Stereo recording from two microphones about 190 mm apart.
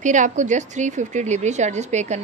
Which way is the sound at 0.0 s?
40° right (ahead or behind).